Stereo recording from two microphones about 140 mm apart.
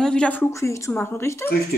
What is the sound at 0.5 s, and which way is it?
Speech, 20° left (ahead or behind).